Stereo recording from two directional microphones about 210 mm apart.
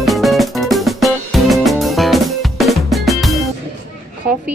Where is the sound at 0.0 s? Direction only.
Centre (ahead or behind).